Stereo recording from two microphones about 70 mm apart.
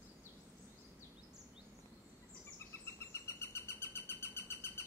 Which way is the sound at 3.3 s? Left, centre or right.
Left.